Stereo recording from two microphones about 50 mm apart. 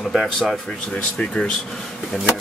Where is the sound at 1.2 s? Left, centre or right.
Left.